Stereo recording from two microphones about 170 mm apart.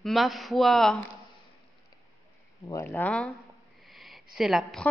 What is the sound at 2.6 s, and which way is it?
Speech, 20° left (ahead or behind).